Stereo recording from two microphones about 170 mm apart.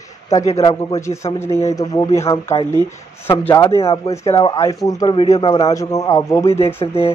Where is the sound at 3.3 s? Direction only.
20° left (ahead or behind).